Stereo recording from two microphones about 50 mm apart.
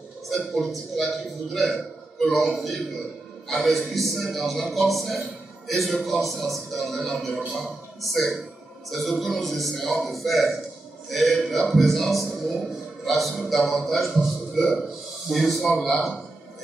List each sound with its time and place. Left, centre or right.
0.3 s a man's voice: centre